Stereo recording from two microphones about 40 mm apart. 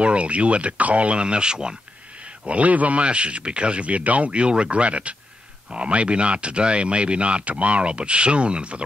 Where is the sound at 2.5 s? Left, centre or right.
Right.